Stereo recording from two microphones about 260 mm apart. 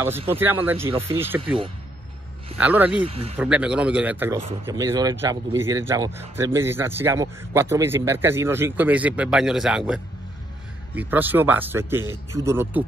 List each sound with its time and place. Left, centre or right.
0.3 s a man's voice: centre
2.5 s a man's voice: centre
3.0 s speech: right
3.3 s a man's voice: centre